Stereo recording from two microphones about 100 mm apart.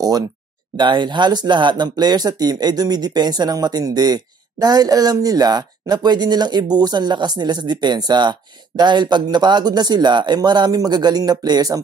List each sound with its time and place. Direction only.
0.7 s speech: 50° right (ahead or behind)